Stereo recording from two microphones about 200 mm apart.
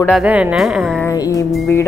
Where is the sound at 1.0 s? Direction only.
15° left (ahead or behind).